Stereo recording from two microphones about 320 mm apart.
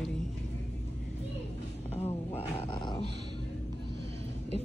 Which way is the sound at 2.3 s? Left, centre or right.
Centre.